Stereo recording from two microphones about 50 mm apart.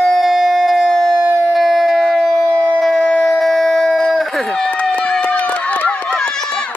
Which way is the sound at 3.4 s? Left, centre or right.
Centre.